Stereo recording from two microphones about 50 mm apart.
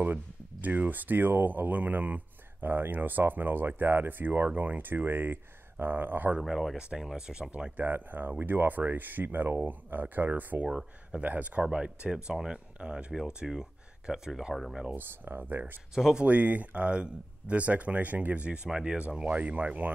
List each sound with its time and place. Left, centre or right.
0.0 s speech: right
6.4 s speech: centre
7.5 s speech: right
7.8 s speech: right; by 14.5 s centre
14.5 s speech: centre
15.0 s speech: right
15.9 s speech: centre
16.3 s speech: right; by 19.0 s centre
19.0 s speech: right